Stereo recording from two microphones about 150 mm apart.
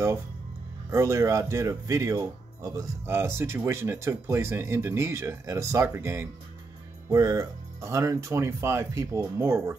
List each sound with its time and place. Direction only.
0.8 s speech: 20° right (ahead or behind)